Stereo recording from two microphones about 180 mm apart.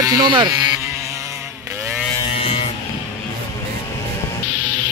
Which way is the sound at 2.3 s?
35° left (ahead or behind).